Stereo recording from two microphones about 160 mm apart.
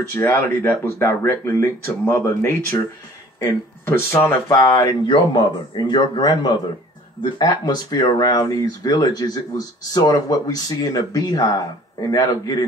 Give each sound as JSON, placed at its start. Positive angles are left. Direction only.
{"t": 0.1, "sound": "speech", "side_deg": 15}